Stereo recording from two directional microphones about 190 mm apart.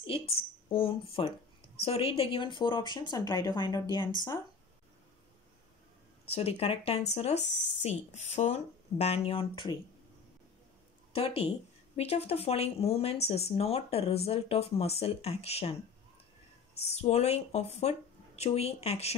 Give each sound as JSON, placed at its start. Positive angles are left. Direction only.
{"t": 0.1, "sound": "speech", "side_deg": 30}
{"t": 6.3, "sound": "speech", "side_deg": 30}
{"t": 11.1, "sound": "speech", "side_deg": 30}
{"t": 16.7, "sound": "speech", "side_deg": 35}